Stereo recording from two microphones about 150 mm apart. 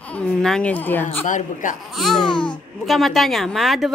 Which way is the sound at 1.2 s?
60° left (ahead or behind).